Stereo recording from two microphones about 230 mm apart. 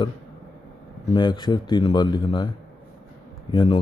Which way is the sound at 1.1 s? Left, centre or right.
Centre.